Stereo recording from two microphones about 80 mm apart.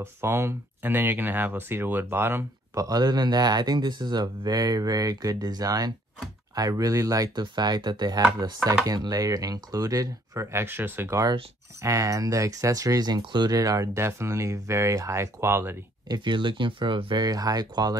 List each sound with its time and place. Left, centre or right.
0.0 s speech: right
2.7 s speech: right
7.5 s speech: right
11.8 s speech: right
13.2 s speech: right
13.5 s speech: right
13.9 s speech: right
16.1 s speech: right